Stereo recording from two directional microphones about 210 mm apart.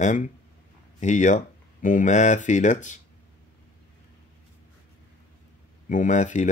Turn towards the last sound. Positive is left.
turn(degrees=35)  # may be behind; listen again after turning